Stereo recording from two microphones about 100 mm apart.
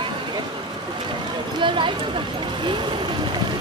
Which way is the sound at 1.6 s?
55° right (ahead or behind).